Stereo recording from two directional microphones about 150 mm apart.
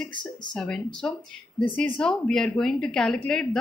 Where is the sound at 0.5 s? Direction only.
5° left (ahead or behind).